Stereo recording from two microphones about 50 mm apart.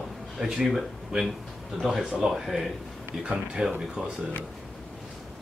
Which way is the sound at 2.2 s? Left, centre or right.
Centre.